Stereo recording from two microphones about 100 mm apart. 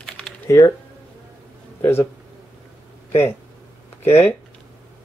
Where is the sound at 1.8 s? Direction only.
25° left (ahead or behind).